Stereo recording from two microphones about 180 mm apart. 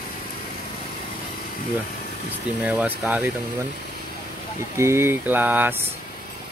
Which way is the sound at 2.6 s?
5° right (ahead or behind).